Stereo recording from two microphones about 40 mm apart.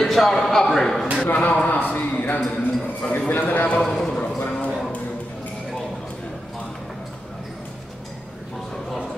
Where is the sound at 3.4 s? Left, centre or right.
Left.